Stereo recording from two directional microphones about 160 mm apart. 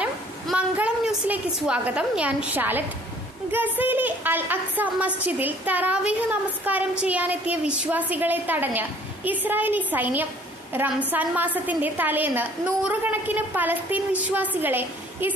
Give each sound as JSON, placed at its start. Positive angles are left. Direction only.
{"t": 0.0, "sound": "a woman's voice", "side_deg": -10}